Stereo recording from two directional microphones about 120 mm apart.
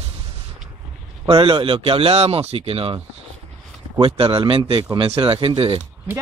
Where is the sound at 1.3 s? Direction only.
50° right (ahead or behind).